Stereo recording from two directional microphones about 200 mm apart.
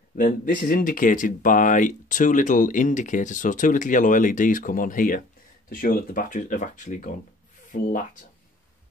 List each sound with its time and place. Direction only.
0.1 s speech: 45° left (ahead or behind)